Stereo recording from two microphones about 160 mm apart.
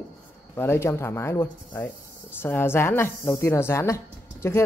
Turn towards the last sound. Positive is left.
turn(degrees=15)  # may be behind; listen again after turning